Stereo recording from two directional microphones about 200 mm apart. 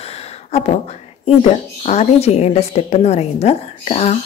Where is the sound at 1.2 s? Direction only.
35° left (ahead or behind).